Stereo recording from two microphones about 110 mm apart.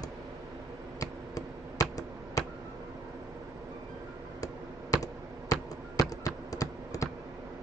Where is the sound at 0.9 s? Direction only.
35° left (ahead or behind).